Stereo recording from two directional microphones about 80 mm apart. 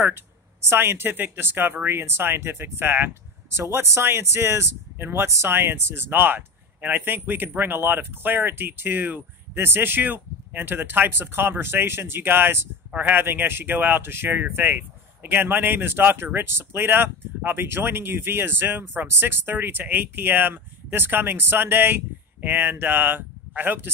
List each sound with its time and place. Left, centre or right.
0.7 s speech: right